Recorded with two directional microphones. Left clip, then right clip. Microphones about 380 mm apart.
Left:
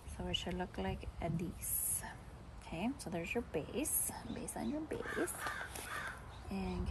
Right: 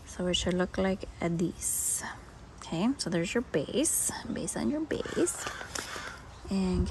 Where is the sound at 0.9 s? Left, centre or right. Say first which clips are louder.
Right 10 dB; right.